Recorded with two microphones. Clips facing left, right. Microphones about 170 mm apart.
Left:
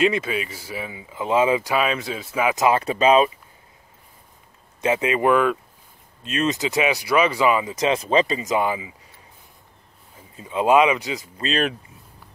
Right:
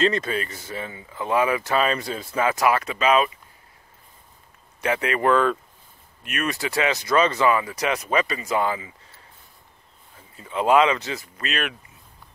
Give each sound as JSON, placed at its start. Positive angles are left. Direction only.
{"t": 0.0, "sound": "speech", "side_deg": 5}
{"t": 2.5, "sound": "speech", "side_deg": 20}
{"t": 2.8, "sound": "speech", "side_deg": 35}
{"t": 4.8, "sound": "speech", "side_deg": 20}
{"t": 6.2, "sound": "speech", "side_deg": 25}
{"t": 10.3, "sound": "speech", "side_deg": 15}
{"t": 11.3, "sound": "speech", "side_deg": 30}